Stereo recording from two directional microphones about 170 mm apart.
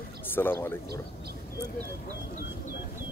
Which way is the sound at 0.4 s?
15° left (ahead or behind).